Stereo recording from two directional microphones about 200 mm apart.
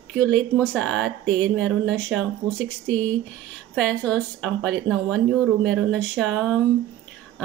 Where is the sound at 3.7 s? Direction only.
5° left (ahead or behind).